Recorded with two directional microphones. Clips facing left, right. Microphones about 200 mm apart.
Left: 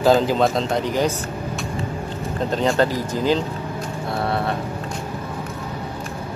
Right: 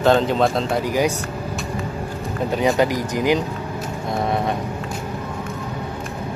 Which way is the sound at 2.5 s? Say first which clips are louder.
Right 1 dB; 10° right (ahead or behind).